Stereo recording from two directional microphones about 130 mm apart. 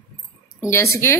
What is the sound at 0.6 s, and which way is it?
Speech, 20° left (ahead or behind).